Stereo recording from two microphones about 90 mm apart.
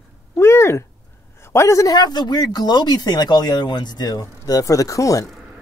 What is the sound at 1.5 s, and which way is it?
Speech, 35° left (ahead or behind).